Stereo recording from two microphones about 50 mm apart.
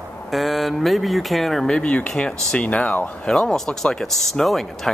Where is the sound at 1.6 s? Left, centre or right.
Left.